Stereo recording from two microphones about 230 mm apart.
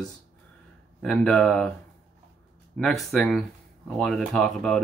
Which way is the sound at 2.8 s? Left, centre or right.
Centre.